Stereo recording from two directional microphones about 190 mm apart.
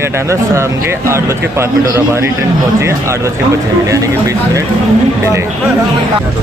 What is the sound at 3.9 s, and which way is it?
Speech, 15° right (ahead or behind).